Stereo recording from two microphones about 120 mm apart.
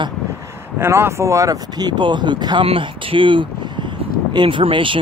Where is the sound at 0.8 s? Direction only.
20° right (ahead or behind).